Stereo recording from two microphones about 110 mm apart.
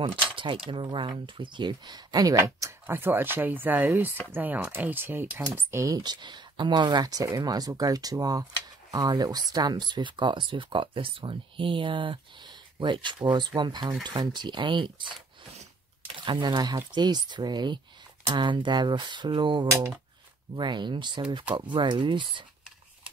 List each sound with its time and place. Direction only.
0.5 s speech: 50° right (ahead or behind); by 5.4 s 20° right (ahead or behind)
5.7 s speech: 30° right (ahead or behind); by 15.1 s 45° right (ahead or behind)
16.3 s speech: 45° right (ahead or behind)